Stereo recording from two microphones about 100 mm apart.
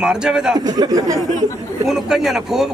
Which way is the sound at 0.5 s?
45° right (ahead or behind).